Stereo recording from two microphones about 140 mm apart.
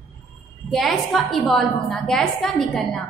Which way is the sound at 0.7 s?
Centre (ahead or behind).